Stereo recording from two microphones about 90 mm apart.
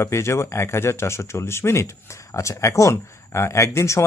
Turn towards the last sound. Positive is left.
turn(degrees=30)  # may be behind; listen again after turning